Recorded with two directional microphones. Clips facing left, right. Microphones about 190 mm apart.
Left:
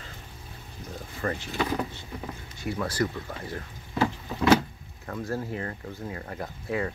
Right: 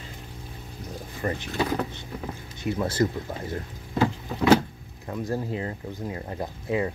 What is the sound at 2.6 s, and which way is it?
Speech, 25° right (ahead or behind).